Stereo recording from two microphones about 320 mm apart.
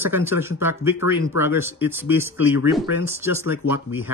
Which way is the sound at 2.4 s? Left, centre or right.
Left.